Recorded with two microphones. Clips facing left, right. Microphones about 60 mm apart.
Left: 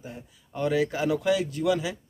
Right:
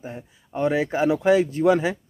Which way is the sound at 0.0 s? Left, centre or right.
Right.